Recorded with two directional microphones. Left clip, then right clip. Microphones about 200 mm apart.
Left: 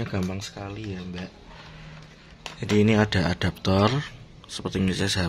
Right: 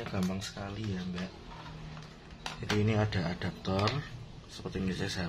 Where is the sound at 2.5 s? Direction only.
50° left (ahead or behind).